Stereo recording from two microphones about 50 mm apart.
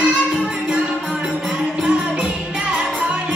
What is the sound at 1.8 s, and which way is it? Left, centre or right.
Music, right.